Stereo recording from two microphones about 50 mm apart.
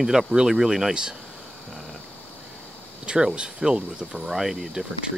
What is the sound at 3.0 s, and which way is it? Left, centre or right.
Speech, centre.